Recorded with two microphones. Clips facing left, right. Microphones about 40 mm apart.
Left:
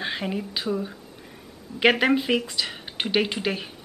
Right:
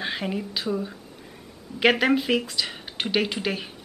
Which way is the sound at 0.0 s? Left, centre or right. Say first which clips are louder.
Even; centre.